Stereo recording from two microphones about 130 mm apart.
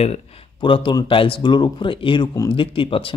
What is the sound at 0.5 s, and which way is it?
A man's voice, 40° left (ahead or behind).